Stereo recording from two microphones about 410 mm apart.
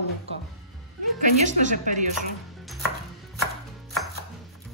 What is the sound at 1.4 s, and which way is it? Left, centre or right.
Speech, centre.